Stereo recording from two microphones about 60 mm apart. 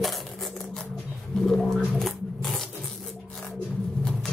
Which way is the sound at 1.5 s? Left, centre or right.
Centre.